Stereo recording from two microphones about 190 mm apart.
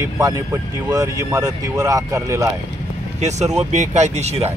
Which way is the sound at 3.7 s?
40° right (ahead or behind).